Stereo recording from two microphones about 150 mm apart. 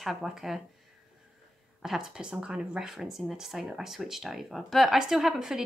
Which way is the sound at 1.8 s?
5° right (ahead or behind).